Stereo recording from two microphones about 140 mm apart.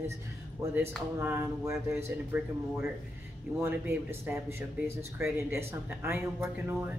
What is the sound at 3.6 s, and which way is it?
Speech, 20° right (ahead or behind).